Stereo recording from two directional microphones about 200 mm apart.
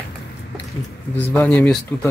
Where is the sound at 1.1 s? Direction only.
10° left (ahead or behind).